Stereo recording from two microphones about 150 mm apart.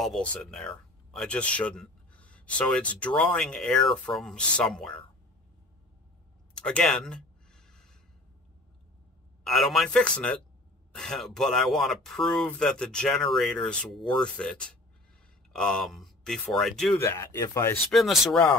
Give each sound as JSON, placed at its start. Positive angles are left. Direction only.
{"t": 0.0, "sound": "speech", "side_deg": 5}
{"t": 6.6, "sound": "a sound", "side_deg": 5}
{"t": 9.4, "sound": "speech", "side_deg": 0}
{"t": 17.0, "sound": "speech", "side_deg": 20}
{"t": 17.9, "sound": "speech", "side_deg": 0}